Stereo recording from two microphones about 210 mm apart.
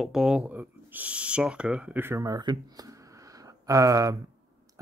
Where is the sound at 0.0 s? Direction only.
Centre (ahead or behind).